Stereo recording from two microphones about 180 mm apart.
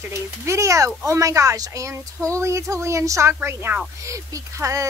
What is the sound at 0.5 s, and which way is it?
Speech, 15° right (ahead or behind).